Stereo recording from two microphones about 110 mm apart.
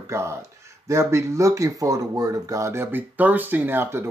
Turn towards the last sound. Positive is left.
turn(degrees=-20)  # may be behind; listen again after turning